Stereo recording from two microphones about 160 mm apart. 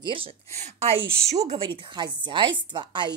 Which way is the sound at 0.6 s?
40° right (ahead or behind).